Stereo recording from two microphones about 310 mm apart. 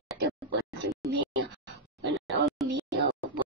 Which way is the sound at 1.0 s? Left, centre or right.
Right.